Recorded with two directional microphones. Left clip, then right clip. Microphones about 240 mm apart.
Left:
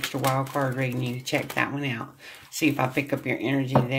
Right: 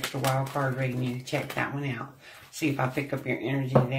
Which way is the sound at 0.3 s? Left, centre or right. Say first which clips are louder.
Left 2 dB; left.